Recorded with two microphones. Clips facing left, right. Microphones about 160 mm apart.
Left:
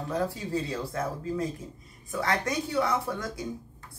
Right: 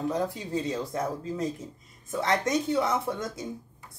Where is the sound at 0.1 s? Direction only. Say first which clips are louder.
Even; 20° right (ahead or behind).